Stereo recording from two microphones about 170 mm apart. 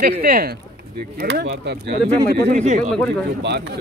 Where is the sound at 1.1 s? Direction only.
80° right.